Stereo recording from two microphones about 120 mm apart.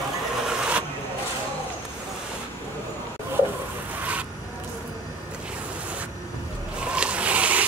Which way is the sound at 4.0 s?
10° right (ahead or behind).